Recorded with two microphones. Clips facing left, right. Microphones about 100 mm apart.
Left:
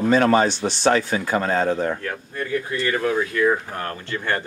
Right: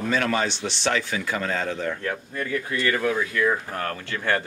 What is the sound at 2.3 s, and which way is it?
Speech, 25° left (ahead or behind).